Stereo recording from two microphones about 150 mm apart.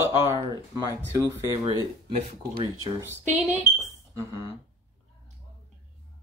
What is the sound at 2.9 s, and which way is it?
Speech, 15° right (ahead or behind).